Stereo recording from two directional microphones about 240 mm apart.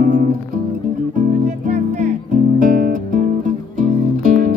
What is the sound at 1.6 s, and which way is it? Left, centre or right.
Music, right.